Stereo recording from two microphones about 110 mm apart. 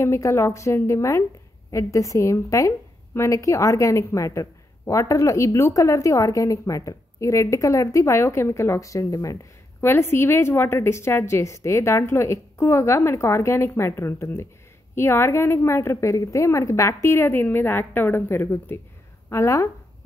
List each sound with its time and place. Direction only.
0.0 s a woman's voice: 25° left (ahead or behind)